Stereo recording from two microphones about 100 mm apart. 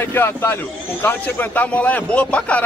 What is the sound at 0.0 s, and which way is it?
A man's voice, 25° left (ahead or behind).